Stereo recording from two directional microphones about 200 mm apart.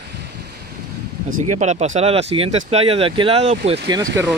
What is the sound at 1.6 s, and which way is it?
Speech, 35° right (ahead or behind).